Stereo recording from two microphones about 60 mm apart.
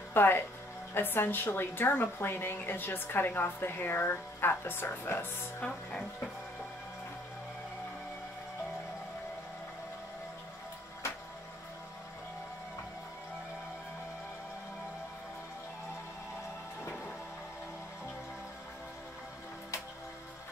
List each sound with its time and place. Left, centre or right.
0.1 s a woman's voice: left
5.7 s speech: centre